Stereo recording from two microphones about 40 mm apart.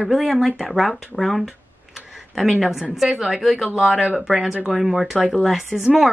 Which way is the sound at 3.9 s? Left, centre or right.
Centre.